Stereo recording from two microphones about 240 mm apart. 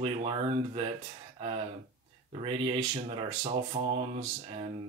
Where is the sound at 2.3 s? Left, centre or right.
Right.